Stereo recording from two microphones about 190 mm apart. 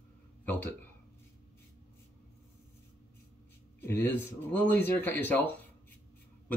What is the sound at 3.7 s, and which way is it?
Speech, 10° left (ahead or behind).